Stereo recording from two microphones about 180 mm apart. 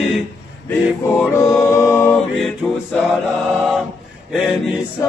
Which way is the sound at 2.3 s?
5° left (ahead or behind).